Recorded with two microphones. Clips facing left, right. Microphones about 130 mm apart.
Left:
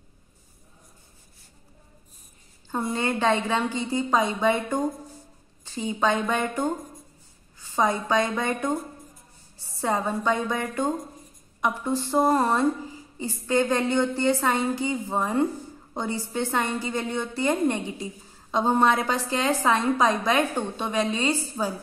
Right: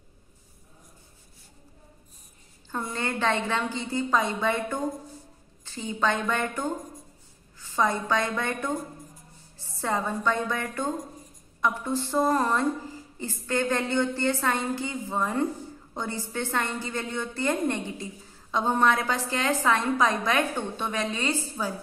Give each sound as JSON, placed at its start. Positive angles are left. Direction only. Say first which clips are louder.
{"t": 2.7, "sound": "a woman's voice", "louder": "left 4 dB", "side_deg": 15}
{"t": 7.7, "sound": "a woman's voice", "louder": "left 2 dB", "side_deg": 15}
{"t": 9.8, "sound": "a woman's voice", "louder": "left 3 dB", "side_deg": 20}